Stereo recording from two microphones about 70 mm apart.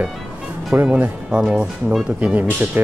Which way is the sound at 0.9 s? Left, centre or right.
Centre.